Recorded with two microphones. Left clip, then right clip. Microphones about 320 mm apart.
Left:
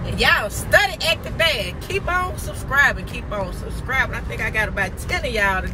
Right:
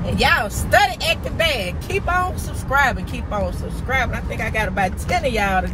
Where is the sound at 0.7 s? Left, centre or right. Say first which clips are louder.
Right 1 dB; centre.